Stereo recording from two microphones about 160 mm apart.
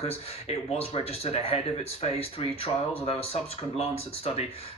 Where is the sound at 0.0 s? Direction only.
40° left (ahead or behind).